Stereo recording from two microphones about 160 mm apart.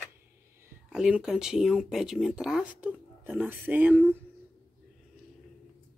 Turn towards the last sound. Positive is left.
turn(degrees=-10)  # may be behind; listen again after turning